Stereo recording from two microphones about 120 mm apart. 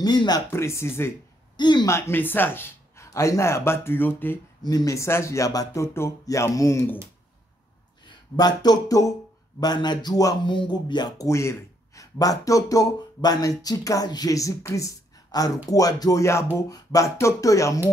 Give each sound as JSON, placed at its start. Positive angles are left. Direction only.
{"t": 0.0, "sound": "speech", "side_deg": 35}
{"t": 0.5, "sound": "speech", "side_deg": 20}
{"t": 1.6, "sound": "speech", "side_deg": 40}
{"t": 1.9, "sound": "speech", "side_deg": 20}
{"t": 4.6, "sound": "speech", "side_deg": 30}
{"t": 8.1, "sound": "speech", "side_deg": 35}